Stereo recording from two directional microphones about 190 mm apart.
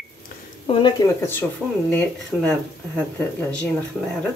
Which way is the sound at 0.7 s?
25° left (ahead or behind).